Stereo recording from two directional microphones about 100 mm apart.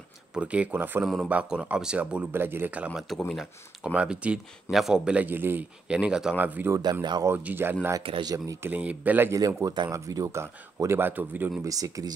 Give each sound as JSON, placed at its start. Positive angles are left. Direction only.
{"t": 0.3, "sound": "speech", "side_deg": -15}
{"t": 1.0, "sound": "speech", "side_deg": 0}
{"t": 2.9, "sound": "speech", "side_deg": 0}
{"t": 3.8, "sound": "speech", "side_deg": -10}
{"t": 6.7, "sound": "speech", "side_deg": -45}
{"t": 7.2, "sound": "speech", "side_deg": -20}
{"t": 8.2, "sound": "speech", "side_deg": -40}
{"t": 8.6, "sound": "speech", "side_deg": -15}
{"t": 9.8, "sound": "speech", "side_deg": -30}
{"t": 11.6, "sound": "speech", "side_deg": -35}